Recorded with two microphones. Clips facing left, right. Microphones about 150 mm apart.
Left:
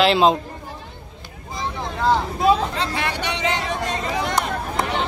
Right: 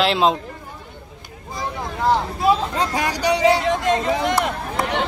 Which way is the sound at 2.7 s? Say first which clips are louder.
Right 3 dB; 40° right (ahead or behind).